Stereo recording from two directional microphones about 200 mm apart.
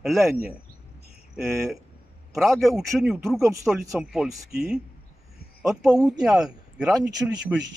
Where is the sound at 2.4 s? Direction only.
Centre (ahead or behind).